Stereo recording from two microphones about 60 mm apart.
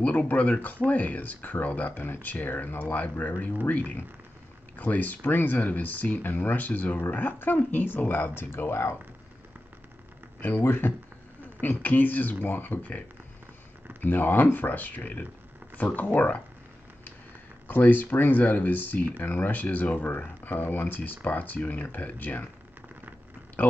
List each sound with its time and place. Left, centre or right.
0.0 s speech: left
8.4 s speech: left
10.4 s speech: left
14.0 s speech: left
17.6 s speech: left